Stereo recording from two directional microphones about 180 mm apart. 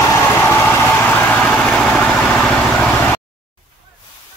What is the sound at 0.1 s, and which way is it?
Vehicle, 15° left (ahead or behind).